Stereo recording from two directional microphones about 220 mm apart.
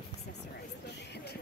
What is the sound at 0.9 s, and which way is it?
Music, 50° left (ahead or behind).